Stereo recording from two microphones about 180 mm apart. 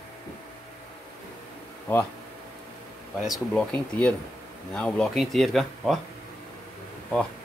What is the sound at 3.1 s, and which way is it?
Speech, centre (ahead or behind).